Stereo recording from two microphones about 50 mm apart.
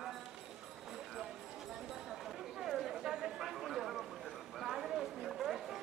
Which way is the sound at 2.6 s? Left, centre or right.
Centre.